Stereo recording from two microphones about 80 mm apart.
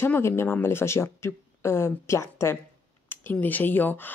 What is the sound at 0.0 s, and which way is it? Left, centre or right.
Speech, left.